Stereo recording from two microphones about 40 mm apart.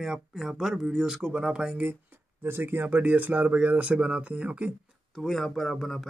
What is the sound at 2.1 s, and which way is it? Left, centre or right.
Speech, right.